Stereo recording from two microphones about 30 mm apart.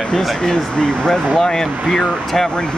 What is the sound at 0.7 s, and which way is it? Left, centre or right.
Speech, left.